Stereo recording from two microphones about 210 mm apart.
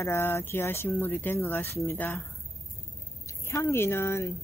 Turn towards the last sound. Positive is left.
turn(degrees=10)  # may be behind; listen again after turning